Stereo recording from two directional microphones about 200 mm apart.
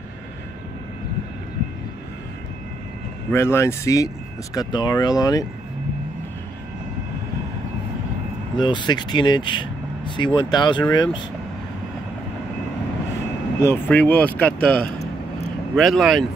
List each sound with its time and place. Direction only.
3.3 s speech: 10° left (ahead or behind)
8.5 s speech: 25° left (ahead or behind)
13.6 s speech: 10° left (ahead or behind)
15.7 s speech: centre (ahead or behind)